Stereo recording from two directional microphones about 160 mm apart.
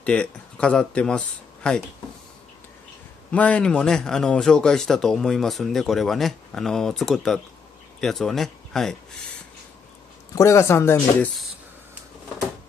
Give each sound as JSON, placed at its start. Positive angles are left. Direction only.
{"t": 0.0, "sound": "speech", "side_deg": 5}
{"t": 3.3, "sound": "a man's voice", "side_deg": 10}
{"t": 10.3, "sound": "speech", "side_deg": 20}